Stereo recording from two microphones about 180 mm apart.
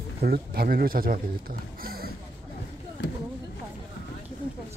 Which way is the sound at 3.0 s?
75° left (ahead or behind).